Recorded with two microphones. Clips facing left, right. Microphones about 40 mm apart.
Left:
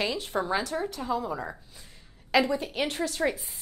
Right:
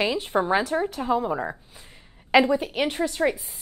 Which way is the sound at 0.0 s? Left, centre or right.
Right.